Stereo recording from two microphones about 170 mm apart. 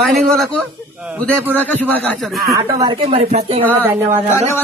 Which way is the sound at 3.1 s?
35° right (ahead or behind).